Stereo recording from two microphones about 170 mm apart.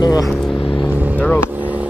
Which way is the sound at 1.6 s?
10° right (ahead or behind).